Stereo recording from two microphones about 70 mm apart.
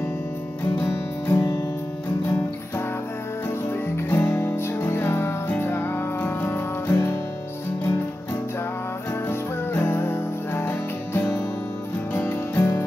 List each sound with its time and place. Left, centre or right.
1.2 s music: left
3.9 s music: left
9.3 s music: left